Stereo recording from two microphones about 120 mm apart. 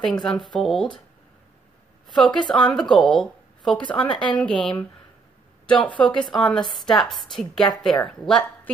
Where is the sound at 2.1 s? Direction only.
10° left (ahead or behind).